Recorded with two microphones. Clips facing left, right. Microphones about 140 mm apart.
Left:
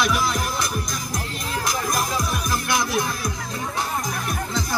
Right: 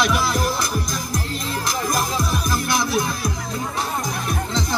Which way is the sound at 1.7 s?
30° right (ahead or behind).